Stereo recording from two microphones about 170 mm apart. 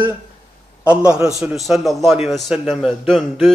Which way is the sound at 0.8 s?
5° right (ahead or behind).